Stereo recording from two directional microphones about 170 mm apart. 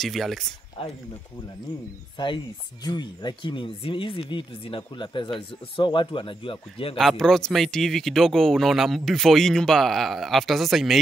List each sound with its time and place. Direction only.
0.0 s speech: centre (ahead or behind)
2.1 s speech: 25° left (ahead or behind)
7.0 s speech: centre (ahead or behind)